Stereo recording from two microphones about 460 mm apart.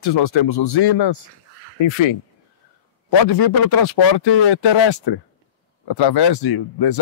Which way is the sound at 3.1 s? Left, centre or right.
Left.